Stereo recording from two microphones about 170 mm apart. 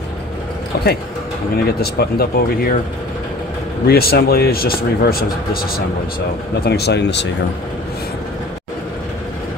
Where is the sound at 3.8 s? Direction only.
65° left (ahead or behind).